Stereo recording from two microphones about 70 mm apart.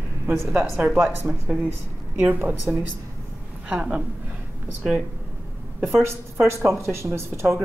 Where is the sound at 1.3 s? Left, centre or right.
Right.